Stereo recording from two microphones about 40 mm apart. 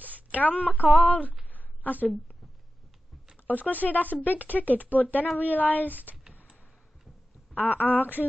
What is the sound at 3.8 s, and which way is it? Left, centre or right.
Speech, left.